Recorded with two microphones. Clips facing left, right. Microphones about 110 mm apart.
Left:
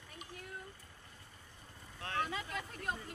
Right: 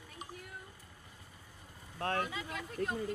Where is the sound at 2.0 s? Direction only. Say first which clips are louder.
Right 4 dB; 50° right (ahead or behind).